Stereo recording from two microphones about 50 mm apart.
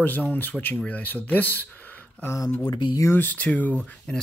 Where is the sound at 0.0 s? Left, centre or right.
Left.